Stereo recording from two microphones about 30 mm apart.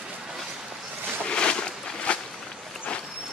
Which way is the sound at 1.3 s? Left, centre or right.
Left.